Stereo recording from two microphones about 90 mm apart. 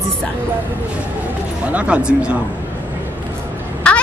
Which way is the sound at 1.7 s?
15° right (ahead or behind).